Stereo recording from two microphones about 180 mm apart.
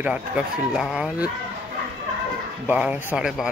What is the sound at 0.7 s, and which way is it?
Speech, 5° right (ahead or behind).